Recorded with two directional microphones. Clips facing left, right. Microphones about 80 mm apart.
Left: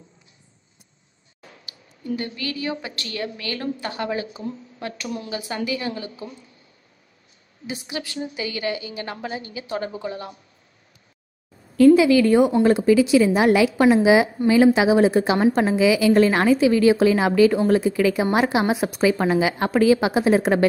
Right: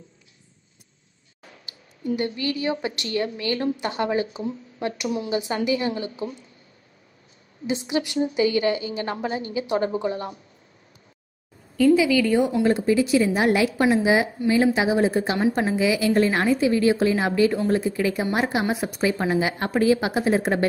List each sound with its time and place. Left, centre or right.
1.7 s a woman's voice: right
5.3 s a woman's voice: right
7.6 s a woman's voice: right
11.9 s a woman's voice: left
12.6 s a woman's voice: left